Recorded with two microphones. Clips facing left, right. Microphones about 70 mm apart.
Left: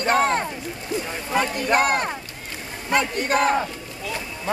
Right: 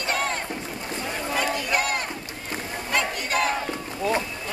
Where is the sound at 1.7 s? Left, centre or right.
Left.